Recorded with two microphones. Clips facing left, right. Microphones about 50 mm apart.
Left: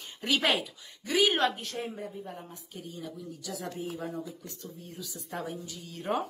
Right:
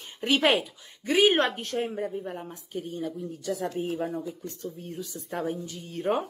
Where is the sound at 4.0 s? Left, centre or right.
Right.